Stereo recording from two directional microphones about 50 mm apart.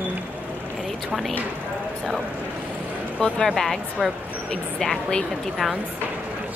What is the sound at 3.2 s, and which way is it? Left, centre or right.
Speech, centre.